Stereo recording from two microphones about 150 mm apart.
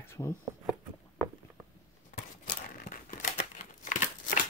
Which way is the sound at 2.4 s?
65° left (ahead or behind).